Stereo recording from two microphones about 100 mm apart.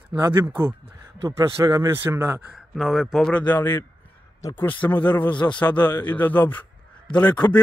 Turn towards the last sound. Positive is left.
turn(degrees=15)  # may be behind; listen again after turning